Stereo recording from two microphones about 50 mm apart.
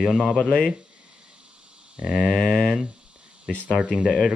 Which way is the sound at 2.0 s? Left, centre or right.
Right.